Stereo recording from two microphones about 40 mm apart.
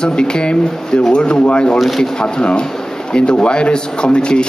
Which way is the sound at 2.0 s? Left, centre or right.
Left.